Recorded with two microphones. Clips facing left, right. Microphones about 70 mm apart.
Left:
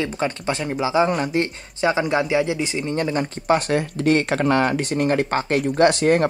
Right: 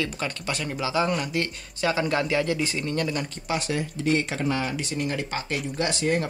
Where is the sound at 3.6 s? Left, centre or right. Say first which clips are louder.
Left 6 dB; left.